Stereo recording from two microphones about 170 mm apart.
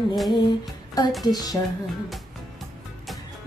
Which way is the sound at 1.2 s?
25° left (ahead or behind).